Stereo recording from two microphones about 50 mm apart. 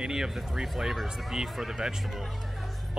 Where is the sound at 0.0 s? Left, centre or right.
Centre.